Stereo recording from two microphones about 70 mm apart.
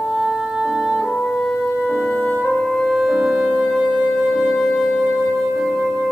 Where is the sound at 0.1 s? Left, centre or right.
Centre.